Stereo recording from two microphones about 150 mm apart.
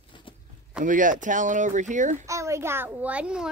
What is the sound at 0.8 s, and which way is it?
Speech, 60° right (ahead or behind).